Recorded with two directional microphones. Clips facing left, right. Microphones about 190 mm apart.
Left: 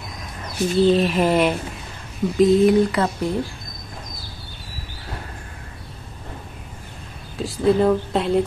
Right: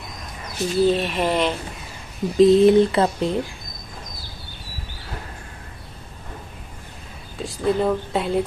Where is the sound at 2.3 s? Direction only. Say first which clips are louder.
Right 2 dB; 25° right (ahead or behind).